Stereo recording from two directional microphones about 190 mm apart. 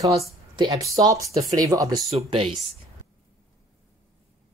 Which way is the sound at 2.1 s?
30° right (ahead or behind).